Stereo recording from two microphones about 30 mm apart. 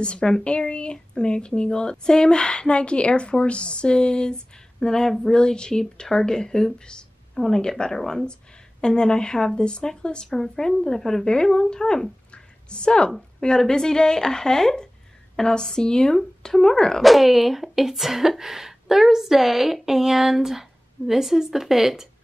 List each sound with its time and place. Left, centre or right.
0.0 s a woman's voice: left
10.3 s a woman's voice: centre
16.4 s a woman's voice: centre
17.0 s a woman's voice: centre